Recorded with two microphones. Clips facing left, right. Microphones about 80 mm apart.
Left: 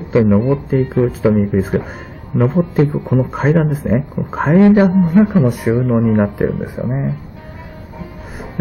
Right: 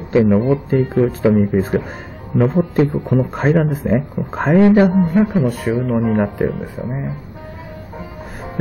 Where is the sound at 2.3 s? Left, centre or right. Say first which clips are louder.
Left 1 dB; centre.